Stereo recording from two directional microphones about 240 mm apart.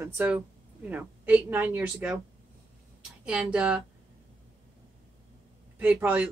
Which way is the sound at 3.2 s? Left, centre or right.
Centre.